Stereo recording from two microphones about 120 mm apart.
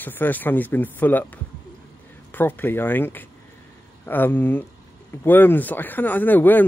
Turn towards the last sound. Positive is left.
turn(degrees=15)  # may be behind; listen again after turning